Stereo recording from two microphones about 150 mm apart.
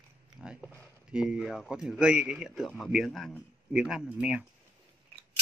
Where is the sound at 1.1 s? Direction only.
5° right (ahead or behind).